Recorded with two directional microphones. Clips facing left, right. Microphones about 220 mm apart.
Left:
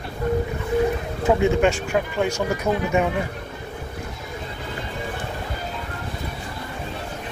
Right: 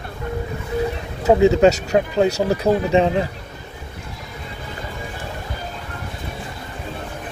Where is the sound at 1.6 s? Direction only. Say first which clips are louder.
Right 5 dB; 40° right (ahead or behind).